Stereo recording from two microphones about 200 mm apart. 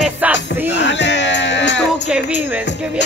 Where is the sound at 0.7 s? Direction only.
60° left (ahead or behind).